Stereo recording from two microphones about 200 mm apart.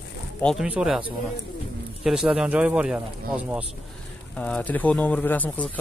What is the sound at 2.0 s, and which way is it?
Speech, 5° right (ahead or behind).